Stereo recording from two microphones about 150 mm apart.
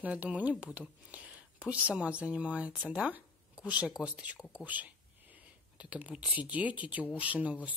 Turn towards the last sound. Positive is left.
turn(degrees=-10)  # may be behind; listen again after turning